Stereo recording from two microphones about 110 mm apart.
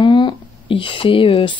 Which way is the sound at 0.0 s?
45° left (ahead or behind).